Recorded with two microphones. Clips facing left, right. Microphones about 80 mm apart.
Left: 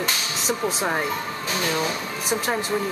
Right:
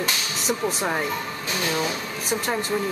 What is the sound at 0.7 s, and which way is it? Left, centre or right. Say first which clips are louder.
Speech: left 2 dB; centre.